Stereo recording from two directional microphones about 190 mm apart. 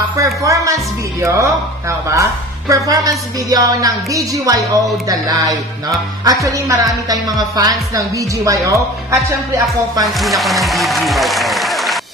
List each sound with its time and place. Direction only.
0.1 s music: 15° right (ahead or behind)
10.1 s speech: centre (ahead or behind)